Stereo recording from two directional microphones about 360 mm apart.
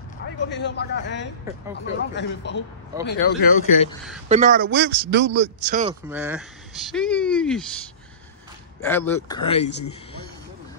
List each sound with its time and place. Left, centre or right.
0.5 s a man's voice: left
4.3 s speech: right
6.0 s speech: centre
8.8 s speech: centre